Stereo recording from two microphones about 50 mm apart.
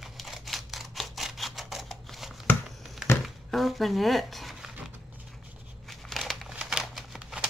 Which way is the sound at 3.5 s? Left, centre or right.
Centre.